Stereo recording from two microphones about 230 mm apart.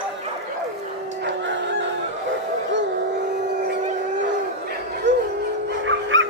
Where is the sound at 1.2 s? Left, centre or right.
Right.